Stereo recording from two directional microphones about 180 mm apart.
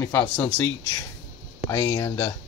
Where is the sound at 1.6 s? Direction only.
15° left (ahead or behind).